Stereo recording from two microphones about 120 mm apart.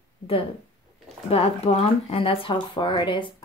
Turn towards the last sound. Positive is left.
turn(degrees=45)  # may be behind; listen again after turning